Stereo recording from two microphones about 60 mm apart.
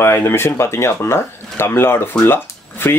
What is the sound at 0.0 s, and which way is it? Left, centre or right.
Speech, left.